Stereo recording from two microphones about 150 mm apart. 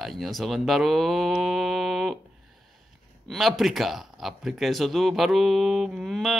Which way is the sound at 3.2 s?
Centre (ahead or behind).